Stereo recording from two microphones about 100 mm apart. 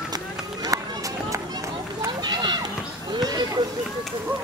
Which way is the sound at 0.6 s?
35° right (ahead or behind).